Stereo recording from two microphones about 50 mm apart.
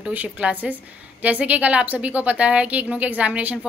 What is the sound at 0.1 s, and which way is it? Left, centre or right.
A woman's voice, right.